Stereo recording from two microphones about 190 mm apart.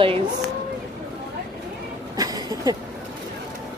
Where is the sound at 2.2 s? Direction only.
20° right (ahead or behind).